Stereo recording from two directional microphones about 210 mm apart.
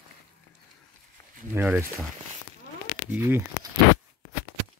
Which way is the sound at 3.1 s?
10° right (ahead or behind).